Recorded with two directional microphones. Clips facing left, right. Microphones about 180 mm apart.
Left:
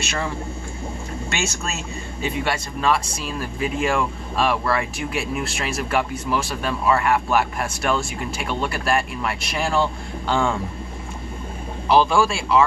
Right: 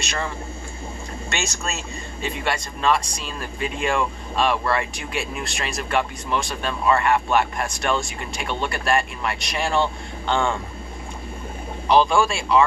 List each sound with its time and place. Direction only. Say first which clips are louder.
0.0 s speech: left 2 dB; 5° left (ahead or behind)
1.3 s speech: even; 5° left (ahead or behind)
11.9 s speech: even; 5° left (ahead or behind)